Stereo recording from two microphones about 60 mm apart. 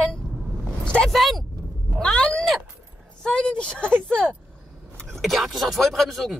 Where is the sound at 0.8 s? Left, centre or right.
Centre.